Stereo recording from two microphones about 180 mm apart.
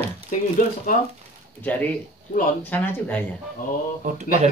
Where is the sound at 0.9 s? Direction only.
50° left (ahead or behind).